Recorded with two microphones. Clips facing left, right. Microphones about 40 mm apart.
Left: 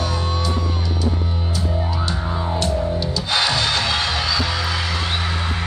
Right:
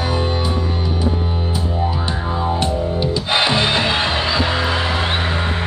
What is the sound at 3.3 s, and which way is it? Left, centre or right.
Music, right.